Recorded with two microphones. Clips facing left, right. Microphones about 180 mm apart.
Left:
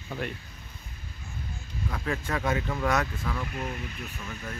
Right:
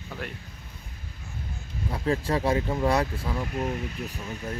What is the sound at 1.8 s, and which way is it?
Speech, 30° right (ahead or behind).